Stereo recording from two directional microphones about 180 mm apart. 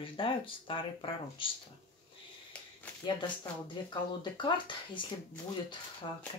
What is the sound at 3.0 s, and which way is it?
Speech, 25° left (ahead or behind).